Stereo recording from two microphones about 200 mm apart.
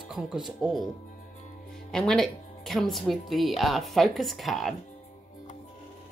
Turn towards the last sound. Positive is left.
turn(degrees=0)  # may be behind; listen again after turning